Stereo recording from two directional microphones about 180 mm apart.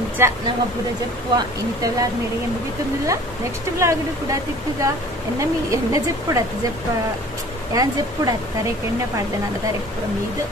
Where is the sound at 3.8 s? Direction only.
15° right (ahead or behind).